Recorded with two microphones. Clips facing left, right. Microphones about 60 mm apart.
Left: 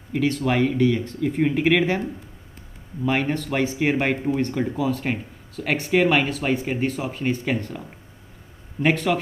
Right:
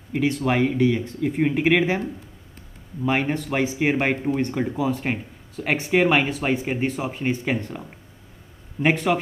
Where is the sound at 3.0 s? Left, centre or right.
Centre.